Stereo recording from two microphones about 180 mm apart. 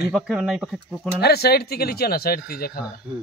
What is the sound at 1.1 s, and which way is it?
Speech, 60° left (ahead or behind).